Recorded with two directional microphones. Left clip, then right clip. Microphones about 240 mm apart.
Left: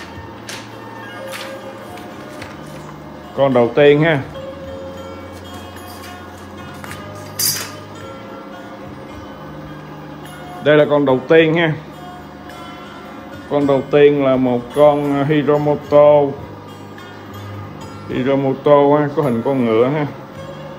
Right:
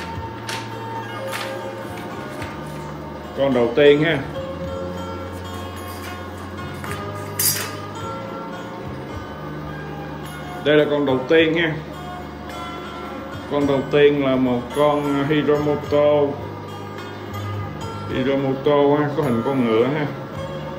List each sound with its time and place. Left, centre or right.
3.3 s speech: left
10.6 s speech: centre
13.5 s speech: centre
18.1 s speech: centre